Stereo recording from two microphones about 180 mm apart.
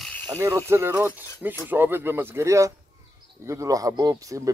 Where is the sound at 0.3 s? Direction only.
20° right (ahead or behind).